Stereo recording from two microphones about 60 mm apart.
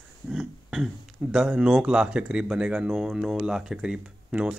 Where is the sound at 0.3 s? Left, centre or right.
Centre.